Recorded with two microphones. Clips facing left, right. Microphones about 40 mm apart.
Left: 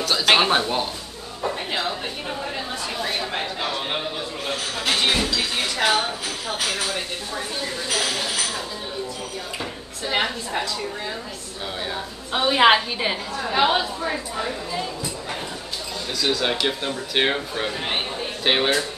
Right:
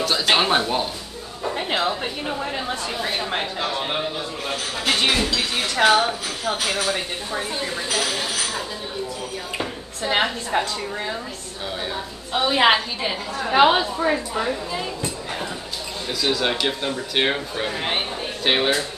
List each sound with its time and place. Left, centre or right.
0.0 s a sound: centre
0.3 s speech: centre
3.6 s a man's voice: centre
8.0 s speech: centre
10.0 s a woman's voice: right
12.4 s a woman's voice: centre
13.5 s a woman's voice: right
16.2 s speech: centre
17.6 s speech: centre
18.4 s speech: centre